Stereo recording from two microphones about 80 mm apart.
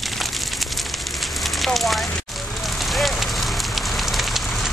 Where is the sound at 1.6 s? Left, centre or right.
Centre.